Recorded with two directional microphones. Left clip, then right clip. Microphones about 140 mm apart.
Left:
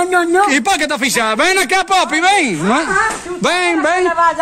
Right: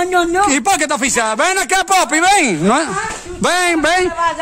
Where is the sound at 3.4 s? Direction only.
80° right.